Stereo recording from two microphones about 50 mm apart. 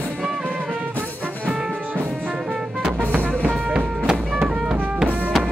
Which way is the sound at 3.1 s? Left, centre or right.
Right.